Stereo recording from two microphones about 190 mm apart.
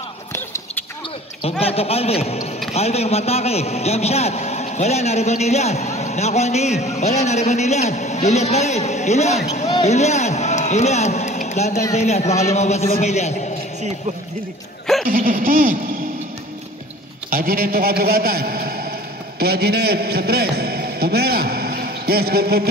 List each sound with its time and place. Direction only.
1.4 s a man's voice: 30° left (ahead or behind)
15.0 s speech: 50° right (ahead or behind)
17.3 s a man's voice: 50° right (ahead or behind)